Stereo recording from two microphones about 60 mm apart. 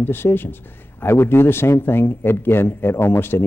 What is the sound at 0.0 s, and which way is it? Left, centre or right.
A woman's voice, left.